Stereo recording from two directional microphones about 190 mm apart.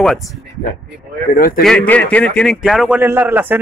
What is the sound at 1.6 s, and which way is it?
A man's voice, 5° left (ahead or behind).